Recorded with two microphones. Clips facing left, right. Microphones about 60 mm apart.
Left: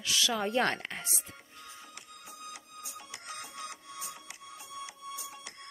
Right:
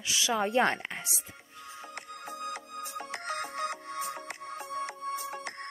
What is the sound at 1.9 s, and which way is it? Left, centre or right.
Music, right.